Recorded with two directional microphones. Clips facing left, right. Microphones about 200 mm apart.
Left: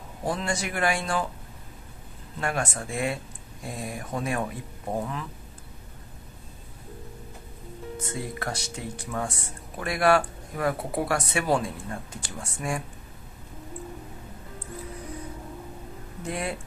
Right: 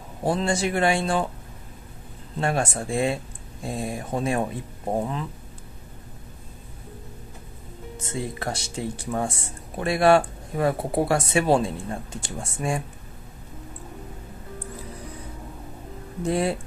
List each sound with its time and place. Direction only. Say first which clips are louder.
0.2 s speech: right 6 dB; 30° right (ahead or behind)
2.4 s speech: right 4 dB; 30° right (ahead or behind)
8.0 s speech: right 4 dB; 25° right (ahead or behind)
16.3 s speech: right 8 dB; 30° right (ahead or behind)